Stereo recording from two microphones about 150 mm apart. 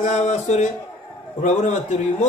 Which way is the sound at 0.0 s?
50° left (ahead or behind).